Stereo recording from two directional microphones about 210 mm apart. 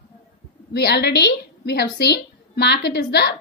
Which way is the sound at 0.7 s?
50° left (ahead or behind).